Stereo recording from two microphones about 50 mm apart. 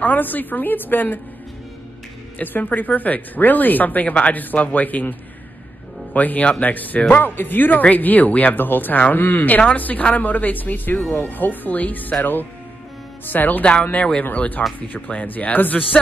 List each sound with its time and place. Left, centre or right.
0.0 s speech: left
2.3 s speech: left
6.1 s speech: left
13.9 s speech: left